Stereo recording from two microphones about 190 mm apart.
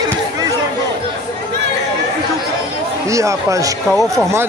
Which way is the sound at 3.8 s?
Centre (ahead or behind).